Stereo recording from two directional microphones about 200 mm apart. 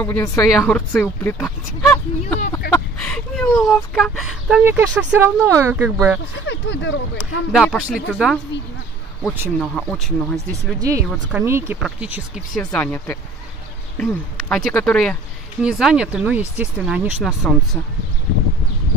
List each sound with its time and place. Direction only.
0.0 s speech: 15° left (ahead or behind); by 5.9 s 10° right (ahead or behind)
6.4 s speech: 65° left (ahead or behind)
7.5 s speech: centre (ahead or behind)
9.6 s speech: centre (ahead or behind)
10.8 s speech: 15° right (ahead or behind)
12.7 s speech: 10° left (ahead or behind)